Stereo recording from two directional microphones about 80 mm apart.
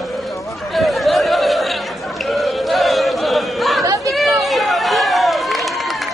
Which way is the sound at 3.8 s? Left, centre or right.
Right.